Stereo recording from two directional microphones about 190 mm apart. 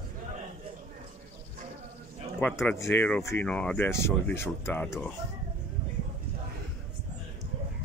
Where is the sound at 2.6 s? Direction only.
10° left (ahead or behind).